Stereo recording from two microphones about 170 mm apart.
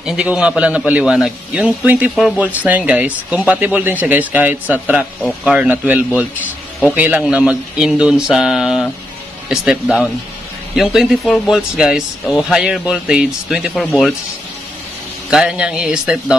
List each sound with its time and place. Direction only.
0.0 s a man's voice: 5° right (ahead or behind)
15.2 s speech: 5° right (ahead or behind)